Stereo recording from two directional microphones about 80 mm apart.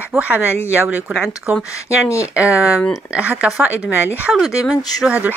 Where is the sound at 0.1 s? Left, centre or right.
Centre.